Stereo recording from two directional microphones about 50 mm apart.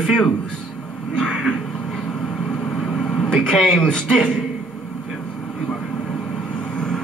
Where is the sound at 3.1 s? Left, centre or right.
Centre.